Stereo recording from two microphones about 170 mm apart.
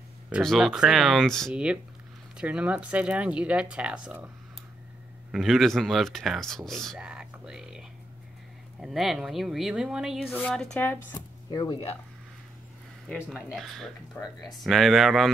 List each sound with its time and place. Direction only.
0.3 s speech: centre (ahead or behind)
5.3 s speech: centre (ahead or behind)
8.8 s speech: centre (ahead or behind)
11.5 s speech: 30° left (ahead or behind)
13.1 s speech: centre (ahead or behind)